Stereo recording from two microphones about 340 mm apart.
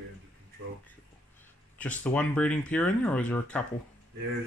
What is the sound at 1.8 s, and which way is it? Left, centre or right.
Speech, centre.